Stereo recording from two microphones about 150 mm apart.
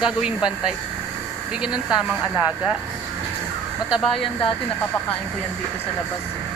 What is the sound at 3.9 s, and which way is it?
Speech, 35° left (ahead or behind).